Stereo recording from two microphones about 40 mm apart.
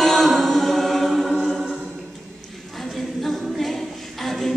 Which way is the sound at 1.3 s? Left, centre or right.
Left.